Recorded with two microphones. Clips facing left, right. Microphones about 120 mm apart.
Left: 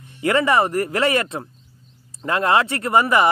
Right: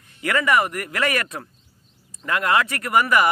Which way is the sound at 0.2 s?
25° left (ahead or behind).